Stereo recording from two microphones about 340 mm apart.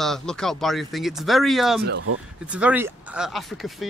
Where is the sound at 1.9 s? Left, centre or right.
Right.